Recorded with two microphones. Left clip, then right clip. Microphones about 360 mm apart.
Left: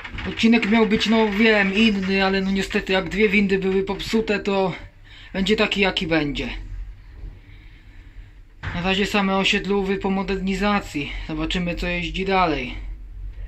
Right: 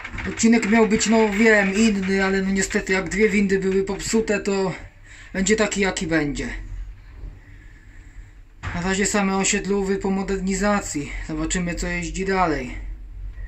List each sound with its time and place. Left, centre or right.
0.4 s speech: centre
8.7 s speech: centre